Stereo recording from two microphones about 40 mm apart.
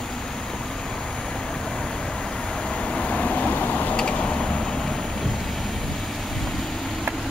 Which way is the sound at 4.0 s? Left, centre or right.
Left.